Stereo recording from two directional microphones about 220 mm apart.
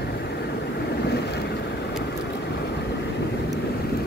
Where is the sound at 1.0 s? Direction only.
50° left (ahead or behind).